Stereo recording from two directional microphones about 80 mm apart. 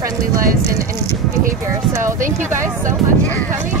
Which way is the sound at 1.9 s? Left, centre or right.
Right.